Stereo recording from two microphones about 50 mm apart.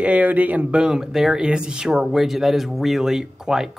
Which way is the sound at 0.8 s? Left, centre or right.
Centre.